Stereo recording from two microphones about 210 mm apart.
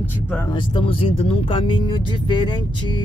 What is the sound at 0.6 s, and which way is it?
Speech, 25° left (ahead or behind).